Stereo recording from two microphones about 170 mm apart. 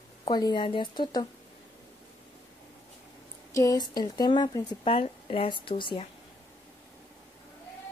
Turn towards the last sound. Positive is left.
turn(degrees=30)  # may be behind; listen again after turning